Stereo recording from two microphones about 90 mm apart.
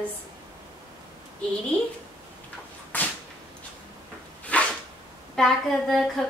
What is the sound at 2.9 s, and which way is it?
Whip, 20° left (ahead or behind).